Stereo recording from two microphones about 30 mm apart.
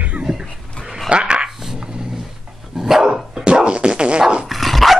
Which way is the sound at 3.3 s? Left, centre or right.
Right.